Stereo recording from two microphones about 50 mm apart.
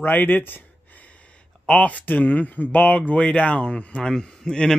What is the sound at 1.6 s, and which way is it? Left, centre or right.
A man's voice, left.